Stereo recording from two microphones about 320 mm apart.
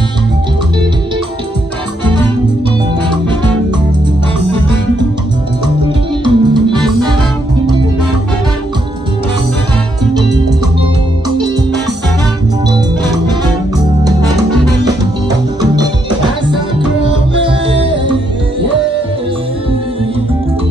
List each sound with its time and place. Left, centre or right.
6.2 s music: centre
13.7 s music: centre
15.7 s music: centre